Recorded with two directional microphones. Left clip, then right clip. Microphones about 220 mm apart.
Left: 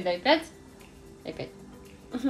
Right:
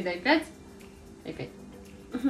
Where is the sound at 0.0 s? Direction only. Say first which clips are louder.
Left 2 dB; 45° left (ahead or behind).